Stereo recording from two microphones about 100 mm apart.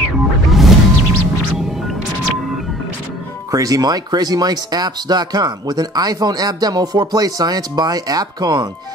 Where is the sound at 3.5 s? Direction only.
35° right (ahead or behind).